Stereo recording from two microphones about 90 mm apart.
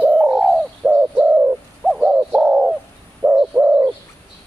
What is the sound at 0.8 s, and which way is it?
Bird, 20° right (ahead or behind).